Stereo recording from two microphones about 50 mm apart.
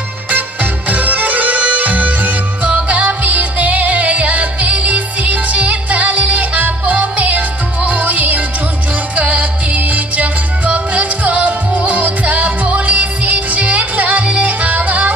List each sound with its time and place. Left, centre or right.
0.3 s music: right